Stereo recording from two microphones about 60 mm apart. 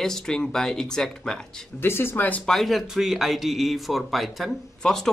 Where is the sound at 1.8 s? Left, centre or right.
Left.